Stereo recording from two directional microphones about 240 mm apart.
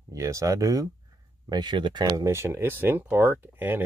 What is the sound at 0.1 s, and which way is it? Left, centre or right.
Speech, centre.